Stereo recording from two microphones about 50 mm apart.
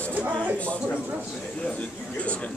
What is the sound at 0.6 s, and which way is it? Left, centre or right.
Speech, left.